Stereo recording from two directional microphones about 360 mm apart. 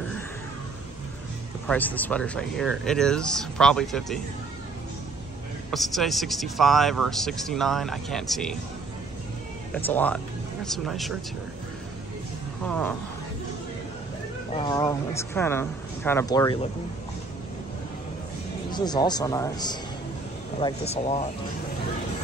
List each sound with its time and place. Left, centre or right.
1.7 s speech: centre
5.7 s speech: centre
9.8 s speech: centre
12.6 s speech: centre
14.5 s speech: centre
18.7 s speech: centre